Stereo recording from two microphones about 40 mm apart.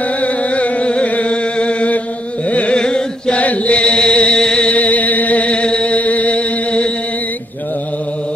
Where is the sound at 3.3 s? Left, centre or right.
Left.